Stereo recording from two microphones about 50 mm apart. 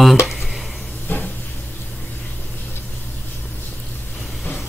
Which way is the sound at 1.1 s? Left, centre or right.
Left.